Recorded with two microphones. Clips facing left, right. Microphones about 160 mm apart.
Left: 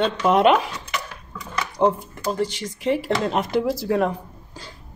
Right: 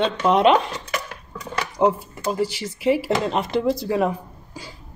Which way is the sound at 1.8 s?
5° right (ahead or behind).